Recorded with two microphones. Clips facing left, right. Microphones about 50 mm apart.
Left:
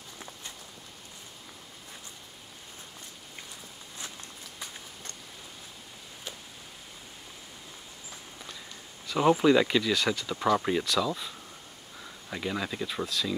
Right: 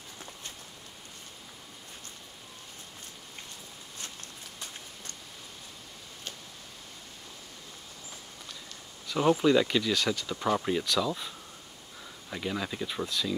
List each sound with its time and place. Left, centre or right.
4.0 s walk: left
9.0 s a sound: centre
9.4 s speech: centre
10.9 s speech: centre
12.3 s speech: centre